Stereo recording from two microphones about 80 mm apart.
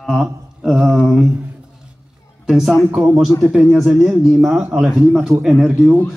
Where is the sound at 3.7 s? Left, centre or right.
Centre.